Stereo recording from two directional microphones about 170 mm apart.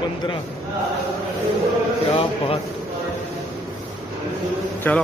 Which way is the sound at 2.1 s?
35° left (ahead or behind).